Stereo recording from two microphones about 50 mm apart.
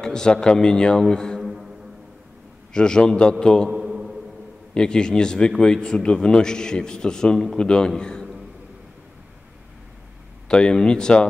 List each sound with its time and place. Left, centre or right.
0.0 s a man's voice: centre
1.4 s music: centre
2.7 s a man's voice: centre
3.7 s a sound: centre
4.7 s a man's voice: centre
8.0 s a sound: centre
10.5 s a man's voice: centre